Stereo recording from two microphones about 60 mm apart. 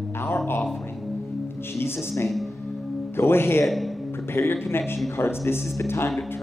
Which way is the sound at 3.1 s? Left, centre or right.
Left.